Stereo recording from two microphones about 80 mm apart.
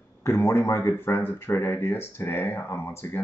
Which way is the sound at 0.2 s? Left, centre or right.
Left.